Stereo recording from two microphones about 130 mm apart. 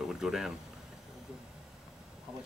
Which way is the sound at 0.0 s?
5° right (ahead or behind).